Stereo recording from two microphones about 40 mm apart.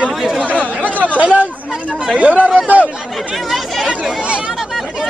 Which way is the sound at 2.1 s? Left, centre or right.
Right.